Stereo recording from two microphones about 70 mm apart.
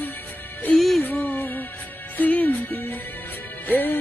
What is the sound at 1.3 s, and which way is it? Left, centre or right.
Music, left.